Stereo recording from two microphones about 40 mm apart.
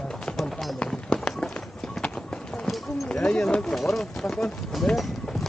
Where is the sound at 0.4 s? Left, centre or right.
Centre.